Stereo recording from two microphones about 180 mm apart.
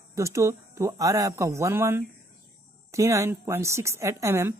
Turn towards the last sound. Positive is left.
turn(degrees=-15)  # may be behind; listen again after turning